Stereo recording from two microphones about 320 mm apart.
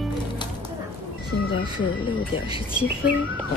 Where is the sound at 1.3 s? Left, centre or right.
Left.